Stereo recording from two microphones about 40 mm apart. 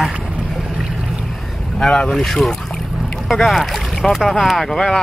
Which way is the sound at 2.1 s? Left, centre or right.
Centre.